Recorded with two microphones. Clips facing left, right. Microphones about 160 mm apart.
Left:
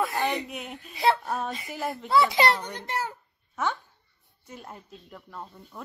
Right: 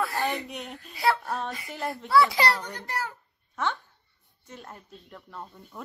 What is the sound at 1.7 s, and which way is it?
Speech, 5° left (ahead or behind).